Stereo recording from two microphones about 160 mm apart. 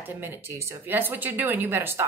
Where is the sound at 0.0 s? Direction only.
15° right (ahead or behind).